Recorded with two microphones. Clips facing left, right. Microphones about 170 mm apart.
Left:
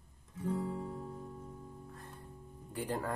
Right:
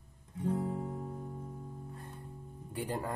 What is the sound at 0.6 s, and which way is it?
Guitar, 25° right (ahead or behind).